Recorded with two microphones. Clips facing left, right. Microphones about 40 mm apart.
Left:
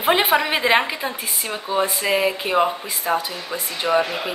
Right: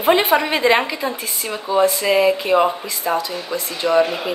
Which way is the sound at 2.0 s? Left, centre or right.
Centre.